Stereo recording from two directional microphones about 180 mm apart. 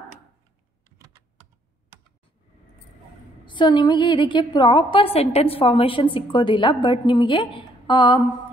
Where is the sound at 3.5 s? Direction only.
25° left (ahead or behind).